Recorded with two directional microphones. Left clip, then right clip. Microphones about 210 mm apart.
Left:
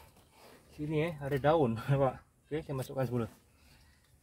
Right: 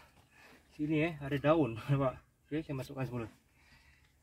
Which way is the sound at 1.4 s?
30° left (ahead or behind).